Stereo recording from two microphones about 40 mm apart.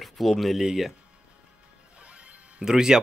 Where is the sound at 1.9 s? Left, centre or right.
Right.